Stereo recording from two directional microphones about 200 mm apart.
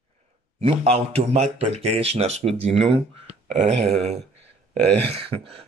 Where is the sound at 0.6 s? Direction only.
30° right (ahead or behind).